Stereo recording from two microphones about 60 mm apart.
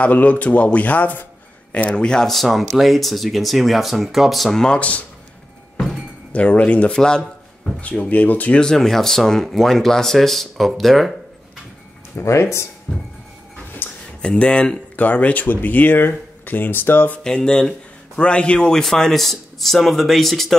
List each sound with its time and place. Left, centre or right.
0.0 s speech: left; by 4.6 s centre
4.6 s speech: left
6.3 s speech: left
6.9 s speech: centre
8.5 s speech: centre
12.2 s speech: left
12.9 s speech: centre
13.8 s a sound: left
14.2 s speech: centre; by 17.2 s left
17.2 s speech: centre